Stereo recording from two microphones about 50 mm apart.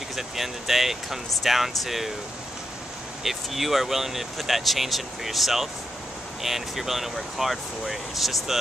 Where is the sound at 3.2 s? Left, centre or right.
Centre.